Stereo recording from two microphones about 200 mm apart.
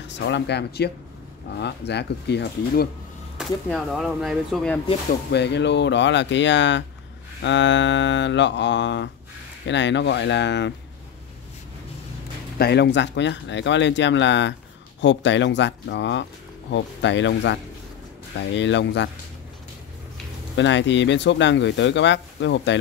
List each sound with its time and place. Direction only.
0.1 s speech: 60° left (ahead or behind)
3.3 s speech: centre (ahead or behind)
5.3 s speech: 60° left (ahead or behind)
12.5 s speech: 55° left (ahead or behind)
20.5 s speech: 65° left (ahead or behind)